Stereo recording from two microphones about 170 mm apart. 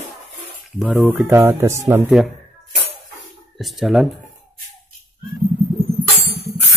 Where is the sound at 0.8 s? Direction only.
5° right (ahead or behind).